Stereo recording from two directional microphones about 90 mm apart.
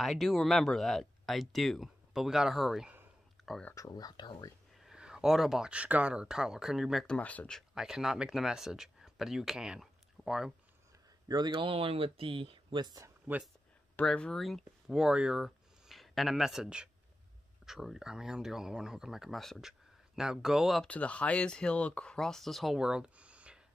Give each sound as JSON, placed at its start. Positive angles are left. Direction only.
{"t": 0.0, "sound": "speech", "side_deg": 0}
{"t": 3.4, "sound": "a sound", "side_deg": 0}
{"t": 3.7, "sound": "speech", "side_deg": 40}
{"t": 4.7, "sound": "speech", "side_deg": -5}
{"t": 7.1, "sound": "speech", "side_deg": 15}
{"t": 7.7, "sound": "speech", "side_deg": -5}
{"t": 11.2, "sound": "a man's voice", "side_deg": -50}
{"t": 11.5, "sound": "speech", "side_deg": -80}
{"t": 12.8, "sound": "speech", "side_deg": -40}
{"t": 14.0, "sound": "speech", "side_deg": 5}
{"t": 20.9, "sound": "speech", "side_deg": 15}
{"t": 22.8, "sound": "a sound", "side_deg": -10}